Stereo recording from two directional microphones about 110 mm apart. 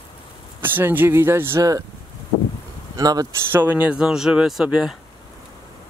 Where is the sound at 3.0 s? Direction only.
35° right (ahead or behind).